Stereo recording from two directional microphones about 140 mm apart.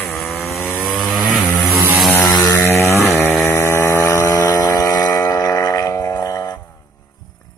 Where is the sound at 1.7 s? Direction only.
20° right (ahead or behind).